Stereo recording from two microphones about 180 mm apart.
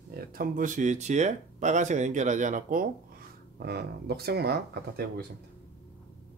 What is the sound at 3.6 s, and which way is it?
Speech, 65° right (ahead or behind).